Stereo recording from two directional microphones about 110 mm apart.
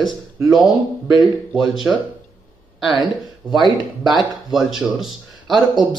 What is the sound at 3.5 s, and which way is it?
Speech, centre (ahead or behind).